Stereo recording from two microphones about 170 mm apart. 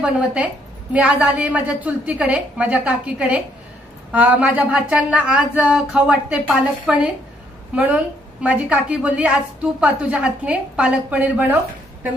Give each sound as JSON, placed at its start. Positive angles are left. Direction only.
{"t": 0.0, "sound": "a woman's voice", "side_deg": -5}